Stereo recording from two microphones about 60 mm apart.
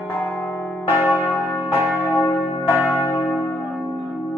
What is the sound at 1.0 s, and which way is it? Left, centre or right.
Church bell, left.